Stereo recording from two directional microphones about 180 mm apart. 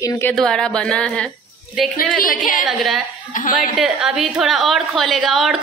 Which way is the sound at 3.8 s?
5° right (ahead or behind).